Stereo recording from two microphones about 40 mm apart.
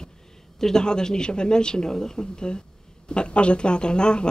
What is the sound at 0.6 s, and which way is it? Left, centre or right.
Speech, centre.